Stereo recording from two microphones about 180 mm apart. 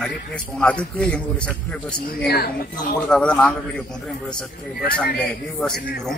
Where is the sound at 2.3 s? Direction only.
55° left (ahead or behind).